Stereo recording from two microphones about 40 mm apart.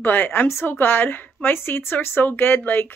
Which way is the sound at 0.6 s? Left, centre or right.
Left.